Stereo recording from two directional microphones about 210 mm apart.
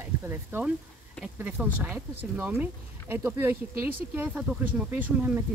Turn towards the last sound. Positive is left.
turn(degrees=-10)  # may be behind; listen again after turning